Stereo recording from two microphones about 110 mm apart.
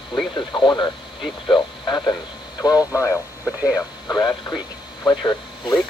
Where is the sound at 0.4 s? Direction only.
45° left (ahead or behind).